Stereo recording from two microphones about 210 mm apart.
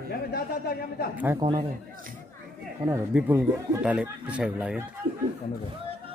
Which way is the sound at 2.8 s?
10° right (ahead or behind).